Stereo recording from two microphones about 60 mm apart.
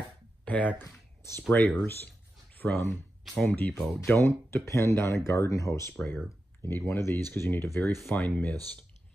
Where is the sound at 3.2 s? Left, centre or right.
Centre.